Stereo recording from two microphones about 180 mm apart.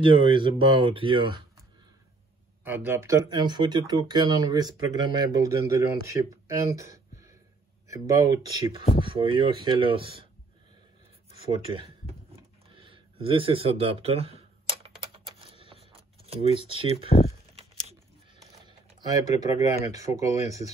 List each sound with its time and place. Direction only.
0.1 s speech: 30° right (ahead or behind)
2.6 s speech: 10° right (ahead or behind); by 10.2 s 30° right (ahead or behind)
11.5 s computer keyboard: 30° right (ahead or behind)
16.5 s speech: 30° right (ahead or behind)
18.7 s typing: 20° right (ahead or behind)
19.5 s speech: 15° right (ahead or behind)